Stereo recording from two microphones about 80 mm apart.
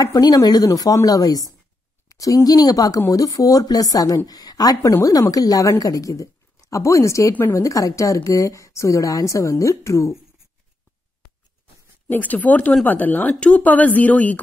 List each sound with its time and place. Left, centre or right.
0.0 s a woman's voice: left
12.1 s speech: left